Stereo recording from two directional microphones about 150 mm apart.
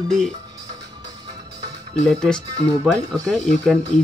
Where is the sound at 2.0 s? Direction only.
5° left (ahead or behind).